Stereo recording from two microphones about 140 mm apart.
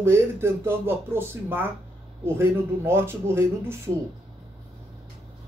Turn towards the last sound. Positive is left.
turn(degrees=-15)  # may be behind; listen again after turning